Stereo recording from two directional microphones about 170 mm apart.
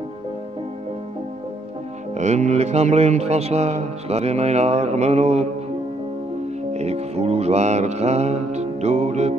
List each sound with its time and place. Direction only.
2.1 s speech: 45° right (ahead or behind)
6.7 s music: 40° right (ahead or behind)